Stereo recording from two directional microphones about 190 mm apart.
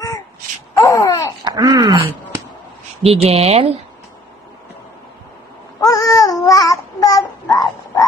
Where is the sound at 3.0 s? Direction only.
30° right (ahead or behind).